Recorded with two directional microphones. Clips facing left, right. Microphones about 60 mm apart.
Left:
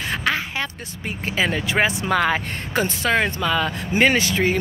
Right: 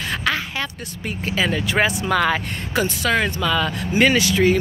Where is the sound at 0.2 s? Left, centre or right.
Left.